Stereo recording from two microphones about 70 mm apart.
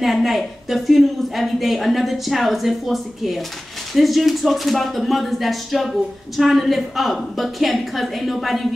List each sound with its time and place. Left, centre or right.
0.0 s speech: centre